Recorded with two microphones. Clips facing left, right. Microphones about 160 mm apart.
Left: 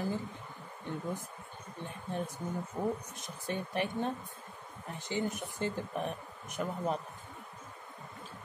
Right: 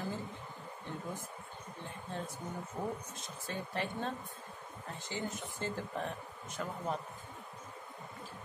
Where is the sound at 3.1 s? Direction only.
15° left (ahead or behind).